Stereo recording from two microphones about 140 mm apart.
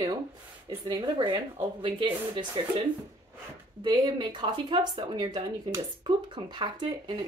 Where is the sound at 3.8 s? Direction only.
30° right (ahead or behind).